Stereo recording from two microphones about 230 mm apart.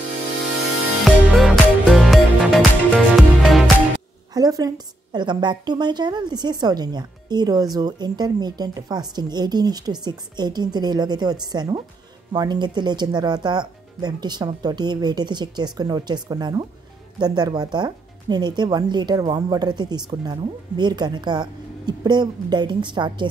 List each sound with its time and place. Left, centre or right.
1.0 s music: centre
4.3 s a woman's voice: centre